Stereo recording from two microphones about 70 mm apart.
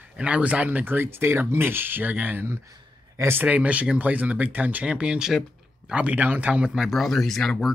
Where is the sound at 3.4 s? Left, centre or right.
Right.